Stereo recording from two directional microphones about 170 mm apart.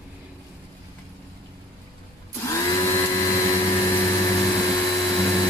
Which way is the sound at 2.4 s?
20° left (ahead or behind).